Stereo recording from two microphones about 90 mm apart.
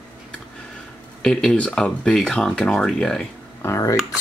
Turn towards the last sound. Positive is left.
turn(degrees=35)  # may be behind; listen again after turning